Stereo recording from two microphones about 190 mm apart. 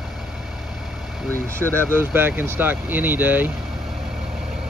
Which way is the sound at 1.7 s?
10° right (ahead or behind).